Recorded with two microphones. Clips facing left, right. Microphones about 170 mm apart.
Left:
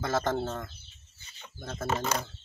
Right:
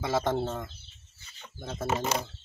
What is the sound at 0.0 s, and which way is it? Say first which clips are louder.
Speech: right 1 dB; 5° right (ahead or behind).